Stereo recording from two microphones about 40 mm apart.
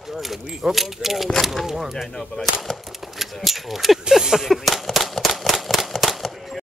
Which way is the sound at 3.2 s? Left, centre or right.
Centre.